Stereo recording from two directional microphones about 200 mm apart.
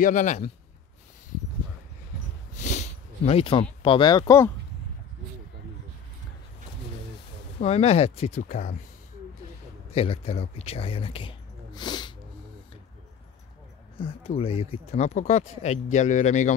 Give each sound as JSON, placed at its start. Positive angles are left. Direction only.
{"t": 0.0, "sound": "speech", "side_deg": 40}
{"t": 2.5, "sound": "a sound", "side_deg": 35}
{"t": 7.6, "sound": "speech", "side_deg": 30}
{"t": 9.9, "sound": "speech", "side_deg": 30}
{"t": 13.9, "sound": "speech", "side_deg": 30}